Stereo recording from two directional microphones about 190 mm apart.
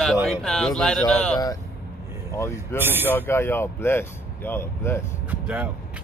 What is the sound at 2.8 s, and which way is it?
Speech, 10° right (ahead or behind).